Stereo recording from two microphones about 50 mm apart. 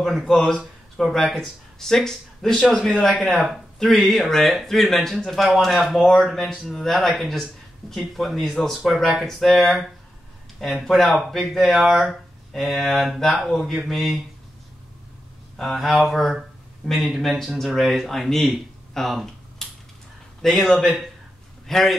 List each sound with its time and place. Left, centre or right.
0.0 s speech: centre
15.5 s speech: centre
21.6 s a man's voice: centre